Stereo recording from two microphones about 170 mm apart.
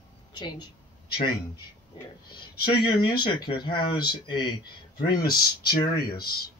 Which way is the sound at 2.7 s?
25° left (ahead or behind).